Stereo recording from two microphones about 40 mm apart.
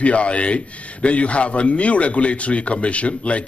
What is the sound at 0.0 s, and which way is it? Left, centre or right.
A man's voice, left.